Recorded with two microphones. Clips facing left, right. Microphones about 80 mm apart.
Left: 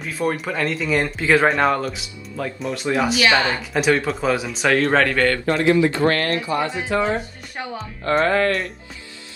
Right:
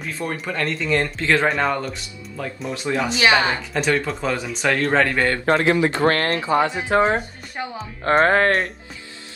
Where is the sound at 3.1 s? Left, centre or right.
Right.